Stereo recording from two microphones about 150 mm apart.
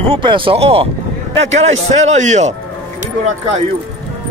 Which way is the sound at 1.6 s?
50° right (ahead or behind).